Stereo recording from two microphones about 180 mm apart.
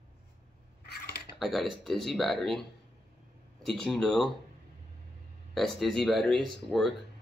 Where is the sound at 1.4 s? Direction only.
Centre (ahead or behind).